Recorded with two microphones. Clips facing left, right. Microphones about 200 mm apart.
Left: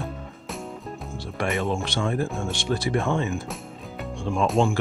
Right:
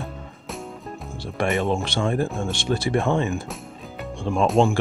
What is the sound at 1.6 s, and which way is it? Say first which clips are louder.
Speech: right 3 dB; 25° right (ahead or behind).